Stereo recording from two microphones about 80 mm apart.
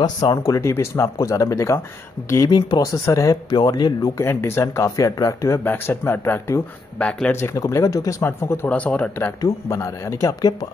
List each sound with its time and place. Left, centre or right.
0.0 s speech: left
3.5 s speech: left
4.2 s speech: left
7.0 s speech: centre
7.5 s speech: left
8.3 s speech: left
8.6 s speech: centre
9.4 s speech: left